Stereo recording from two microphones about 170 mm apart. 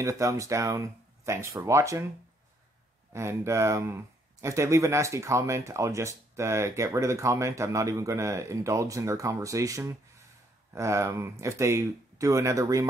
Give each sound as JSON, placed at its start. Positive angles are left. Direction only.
{"t": 0.0, "sound": "speech", "side_deg": -20}
{"t": 3.1, "sound": "speech", "side_deg": -15}